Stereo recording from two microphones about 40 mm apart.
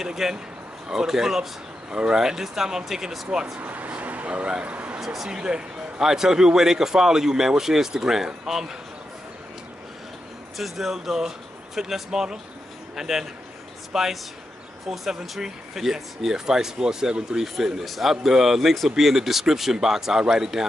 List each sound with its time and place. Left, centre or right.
0.0 s speech: centre
3.5 s a sound: right
4.5 s speech: right
5.0 s speech: centre
5.3 s speech: centre
10.6 s speech: centre